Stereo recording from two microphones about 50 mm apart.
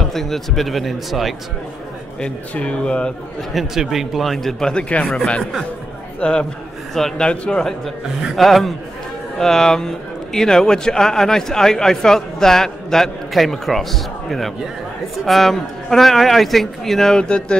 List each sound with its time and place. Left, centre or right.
0.1 s a man's voice: centre
2.1 s speech: left
3.5 s a man's voice: centre
4.8 s speech: left
6.1 s a man's voice: left
6.9 s speech: centre
7.2 s speech: centre
8.4 s a man's voice: centre
17.2 s speech: centre